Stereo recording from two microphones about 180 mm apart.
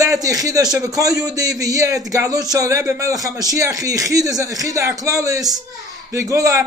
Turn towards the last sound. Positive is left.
turn(degrees=-20)  # may be behind; listen again after turning